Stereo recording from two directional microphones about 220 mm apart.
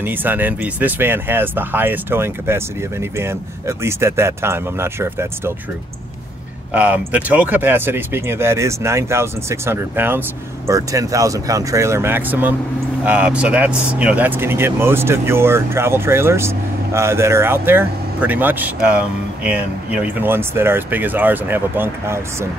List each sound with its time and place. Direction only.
0.0 s speech: 10° right (ahead or behind)
6.7 s speech: 5° right (ahead or behind)